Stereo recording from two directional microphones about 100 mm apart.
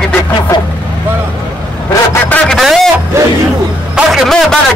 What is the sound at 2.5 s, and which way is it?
Speech, centre (ahead or behind).